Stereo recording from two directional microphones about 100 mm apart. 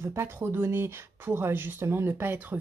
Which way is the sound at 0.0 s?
25° right (ahead or behind).